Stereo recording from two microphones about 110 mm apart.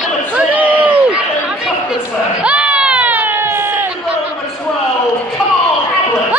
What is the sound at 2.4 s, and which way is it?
Baby cry, 10° right (ahead or behind).